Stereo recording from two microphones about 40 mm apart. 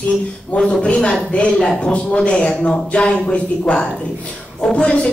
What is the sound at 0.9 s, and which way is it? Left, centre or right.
Speech, centre.